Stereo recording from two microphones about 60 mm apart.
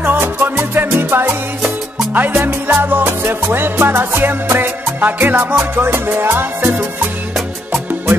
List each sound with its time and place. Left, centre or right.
0.0 s music: right
2.1 s music: right